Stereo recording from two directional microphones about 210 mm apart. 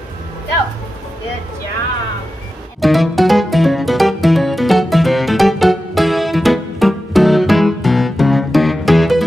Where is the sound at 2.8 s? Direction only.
Centre (ahead or behind).